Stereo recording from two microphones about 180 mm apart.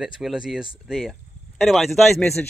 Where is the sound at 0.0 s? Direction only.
Centre (ahead or behind).